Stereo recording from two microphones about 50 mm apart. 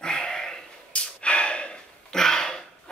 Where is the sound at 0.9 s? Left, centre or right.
Left.